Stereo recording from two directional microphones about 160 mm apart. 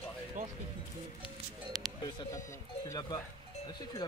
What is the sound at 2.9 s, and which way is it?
Speech, 25° left (ahead or behind).